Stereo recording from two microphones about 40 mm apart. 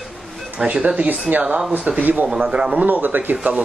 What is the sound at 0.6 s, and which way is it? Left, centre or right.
Speech, right.